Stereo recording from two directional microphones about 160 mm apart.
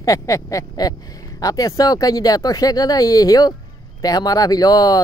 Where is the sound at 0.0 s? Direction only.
20° left (ahead or behind).